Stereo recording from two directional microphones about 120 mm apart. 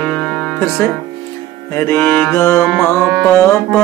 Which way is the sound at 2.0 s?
15° left (ahead or behind).